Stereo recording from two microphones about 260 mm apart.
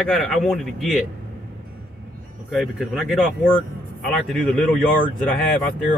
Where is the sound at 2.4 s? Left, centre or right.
Centre.